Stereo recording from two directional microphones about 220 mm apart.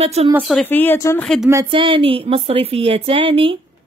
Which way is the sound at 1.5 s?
20° right (ahead or behind).